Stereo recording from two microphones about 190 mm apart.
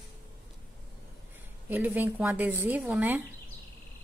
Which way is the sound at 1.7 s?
10° right (ahead or behind).